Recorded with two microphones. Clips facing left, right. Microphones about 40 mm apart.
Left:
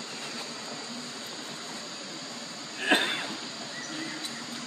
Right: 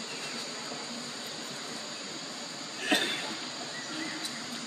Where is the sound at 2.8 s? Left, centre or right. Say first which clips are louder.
Left 4 dB; left.